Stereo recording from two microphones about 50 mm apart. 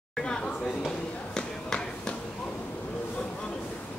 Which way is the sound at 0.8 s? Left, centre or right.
Centre.